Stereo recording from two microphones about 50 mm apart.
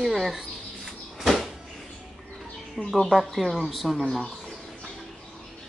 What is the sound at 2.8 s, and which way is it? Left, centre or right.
Speech, centre.